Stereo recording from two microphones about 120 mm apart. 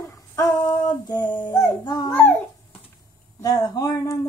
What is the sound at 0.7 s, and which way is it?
Speech, 35° left (ahead or behind).